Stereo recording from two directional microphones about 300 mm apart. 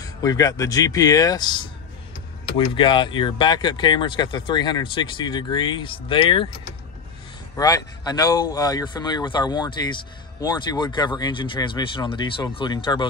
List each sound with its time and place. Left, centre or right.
0.0 s speech: centre
7.5 s speech: centre